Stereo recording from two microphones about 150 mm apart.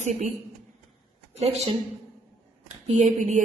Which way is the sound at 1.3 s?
45° right (ahead or behind).